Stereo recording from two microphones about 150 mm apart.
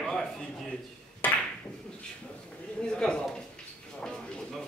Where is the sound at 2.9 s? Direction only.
5° left (ahead or behind).